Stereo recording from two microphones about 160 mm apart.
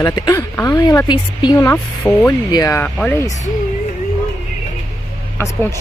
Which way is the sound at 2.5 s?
25° left (ahead or behind).